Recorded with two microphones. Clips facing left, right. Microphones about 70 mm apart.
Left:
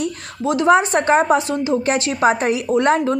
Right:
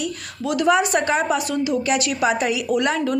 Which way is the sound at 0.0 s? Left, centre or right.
Left.